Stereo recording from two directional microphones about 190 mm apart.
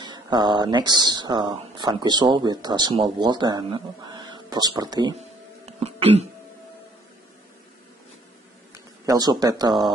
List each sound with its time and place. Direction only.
0.0 s speech: 20° right (ahead or behind)
5.7 s a sound: 30° right (ahead or behind)
9.0 s speech: 20° right (ahead or behind)